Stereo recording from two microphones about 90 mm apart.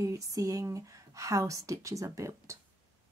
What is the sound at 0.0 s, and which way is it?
Speech, 40° right (ahead or behind).